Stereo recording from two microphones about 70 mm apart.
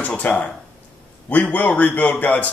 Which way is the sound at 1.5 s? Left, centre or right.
Left.